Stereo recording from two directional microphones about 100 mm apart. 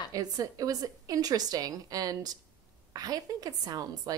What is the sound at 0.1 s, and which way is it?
A woman's voice, 35° right (ahead or behind).